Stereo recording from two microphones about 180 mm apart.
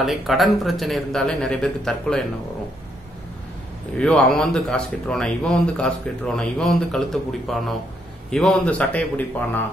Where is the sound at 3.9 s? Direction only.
5° left (ahead or behind).